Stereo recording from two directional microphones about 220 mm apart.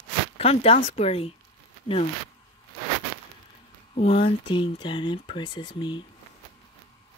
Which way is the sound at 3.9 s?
30° left (ahead or behind).